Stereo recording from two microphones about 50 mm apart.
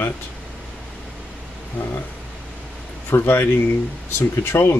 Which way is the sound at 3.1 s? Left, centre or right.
Left.